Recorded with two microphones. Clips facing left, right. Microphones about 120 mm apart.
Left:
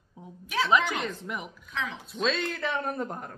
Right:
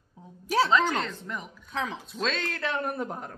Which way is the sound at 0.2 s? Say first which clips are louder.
Left 3 dB; 20° left (ahead or behind).